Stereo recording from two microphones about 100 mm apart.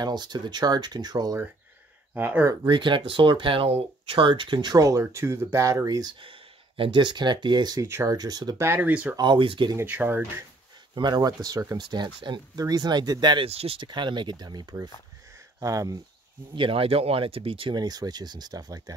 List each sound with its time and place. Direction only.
0.0 s speech: 45° right (ahead or behind)
2.1 s speech: 20° right (ahead or behind)
2.7 s speech: 55° right (ahead or behind)
6.1 s speech: 60° right (ahead or behind); by 8.5 s 40° right (ahead or behind)
8.5 s speech: 20° right (ahead or behind)
9.1 s speech: 50° right (ahead or behind)
9.8 s speech: 20° right (ahead or behind)
11.0 s speech: 45° right (ahead or behind)
13.5 s speech: 80° right
13.7 s speech: 50° right (ahead or behind)
15.3 s a sound: 35° right (ahead or behind)
16.5 s speech: 65° right (ahead or behind)
17.7 s speech: 40° right (ahead or behind)